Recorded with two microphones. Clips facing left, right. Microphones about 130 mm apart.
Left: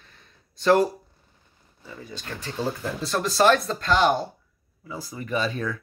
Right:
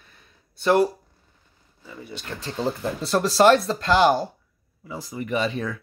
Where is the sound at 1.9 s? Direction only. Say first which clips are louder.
Right 1 dB; 10° right (ahead or behind).